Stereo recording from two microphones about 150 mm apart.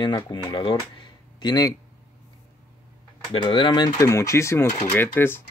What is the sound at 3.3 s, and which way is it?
Speech, 35° left (ahead or behind).